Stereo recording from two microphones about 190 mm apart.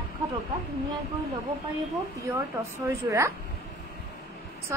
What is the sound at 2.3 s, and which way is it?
A woman's voice, 10° right (ahead or behind).